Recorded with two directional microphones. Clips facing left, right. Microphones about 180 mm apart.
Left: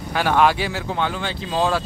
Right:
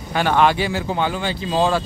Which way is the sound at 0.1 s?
5° left (ahead or behind).